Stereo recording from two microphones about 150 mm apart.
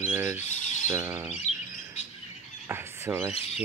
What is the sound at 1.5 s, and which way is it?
Bird, 45° left (ahead or behind).